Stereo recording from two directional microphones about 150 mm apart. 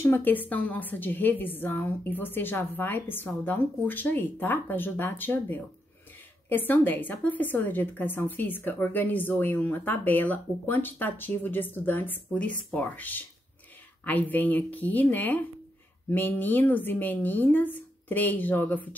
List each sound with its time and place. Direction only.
0.0 s a woman's voice: 15° left (ahead or behind)